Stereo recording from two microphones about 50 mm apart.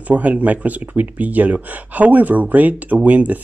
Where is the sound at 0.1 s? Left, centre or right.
Right.